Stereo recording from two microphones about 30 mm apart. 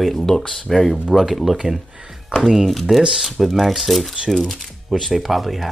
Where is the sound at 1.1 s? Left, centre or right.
Centre.